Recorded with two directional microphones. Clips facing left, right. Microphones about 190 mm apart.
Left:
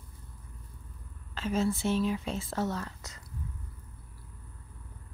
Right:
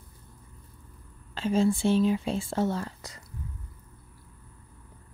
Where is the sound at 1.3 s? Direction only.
30° right (ahead or behind).